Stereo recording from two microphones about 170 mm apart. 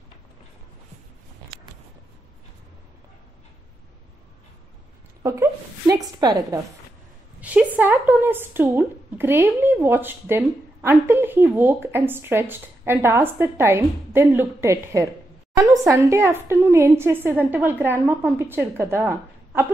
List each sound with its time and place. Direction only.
5.2 s a woman's voice: 15° right (ahead or behind)
7.3 s a woman's voice: 10° right (ahead or behind)